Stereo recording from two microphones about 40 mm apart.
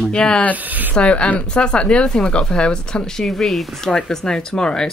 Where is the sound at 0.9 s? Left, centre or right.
Left; by 3.7 s centre.